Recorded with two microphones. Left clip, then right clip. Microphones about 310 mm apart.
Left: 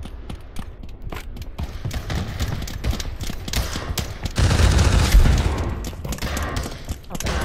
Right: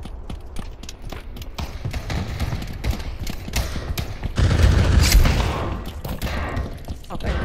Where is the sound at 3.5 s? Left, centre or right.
Centre.